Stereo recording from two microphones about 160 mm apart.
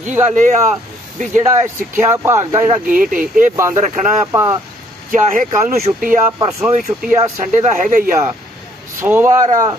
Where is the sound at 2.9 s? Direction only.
60° right (ahead or behind).